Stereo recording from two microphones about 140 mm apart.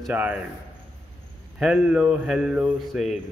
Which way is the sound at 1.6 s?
10° right (ahead or behind).